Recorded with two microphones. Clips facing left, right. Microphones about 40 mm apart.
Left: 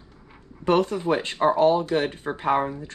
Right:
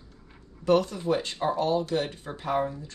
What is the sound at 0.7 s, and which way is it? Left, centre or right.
Speech, left.